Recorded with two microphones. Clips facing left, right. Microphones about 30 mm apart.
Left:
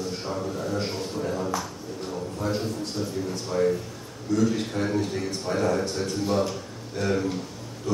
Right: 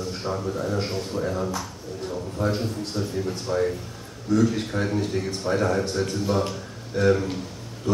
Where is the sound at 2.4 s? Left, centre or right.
Centre.